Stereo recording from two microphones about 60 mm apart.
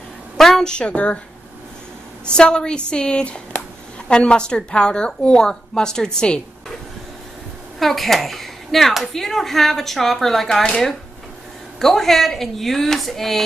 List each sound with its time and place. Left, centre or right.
0.4 s a woman's voice: centre
2.2 s a woman's voice: centre
7.8 s speech: centre
11.8 s speech: centre